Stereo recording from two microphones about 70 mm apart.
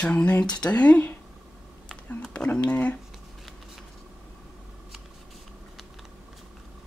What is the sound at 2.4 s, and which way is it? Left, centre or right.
Speech, centre.